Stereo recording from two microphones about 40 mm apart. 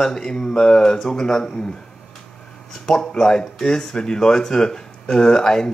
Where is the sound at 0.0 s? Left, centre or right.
Centre.